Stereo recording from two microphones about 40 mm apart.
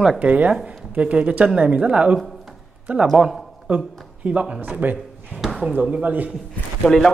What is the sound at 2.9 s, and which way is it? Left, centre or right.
A man's voice, right.